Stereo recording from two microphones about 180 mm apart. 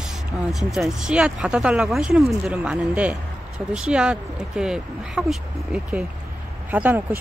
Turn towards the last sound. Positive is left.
turn(degrees=-10)  # may be behind; listen again after turning